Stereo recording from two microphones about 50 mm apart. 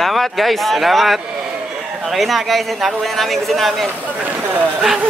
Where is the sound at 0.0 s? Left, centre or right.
Centre.